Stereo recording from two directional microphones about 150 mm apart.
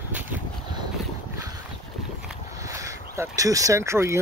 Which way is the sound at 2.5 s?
20° right (ahead or behind).